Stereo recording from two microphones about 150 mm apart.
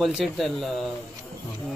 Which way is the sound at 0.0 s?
Centre (ahead or behind).